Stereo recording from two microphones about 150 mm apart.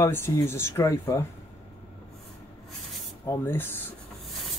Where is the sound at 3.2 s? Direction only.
15° left (ahead or behind).